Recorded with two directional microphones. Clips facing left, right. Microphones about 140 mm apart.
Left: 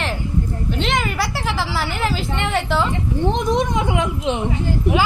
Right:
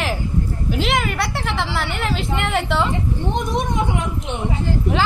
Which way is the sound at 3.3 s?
90° left.